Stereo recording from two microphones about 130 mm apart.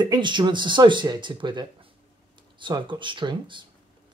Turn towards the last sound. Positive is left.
turn(degrees=-35)  # may be behind; listen again after turning